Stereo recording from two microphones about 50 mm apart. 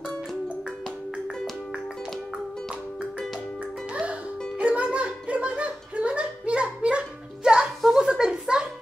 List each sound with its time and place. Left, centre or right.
2.3 s music: centre
3.9 s music: right
8.0 s a sound: centre